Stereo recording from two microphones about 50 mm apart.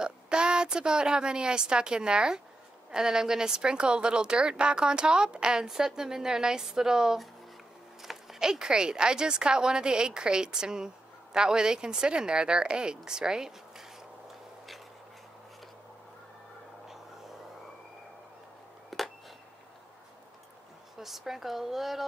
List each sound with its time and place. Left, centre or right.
0.0 s a woman's voice: centre
18.9 s a sound: centre
21.0 s speech: centre